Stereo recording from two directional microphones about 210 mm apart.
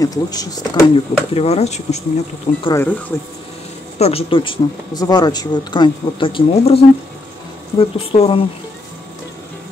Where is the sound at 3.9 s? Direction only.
30° left (ahead or behind).